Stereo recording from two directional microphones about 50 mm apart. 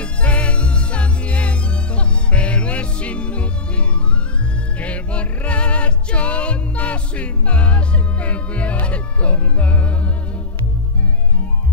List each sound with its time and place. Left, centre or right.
0.0 s music: left